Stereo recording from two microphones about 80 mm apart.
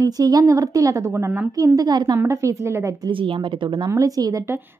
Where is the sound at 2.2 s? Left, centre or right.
Right.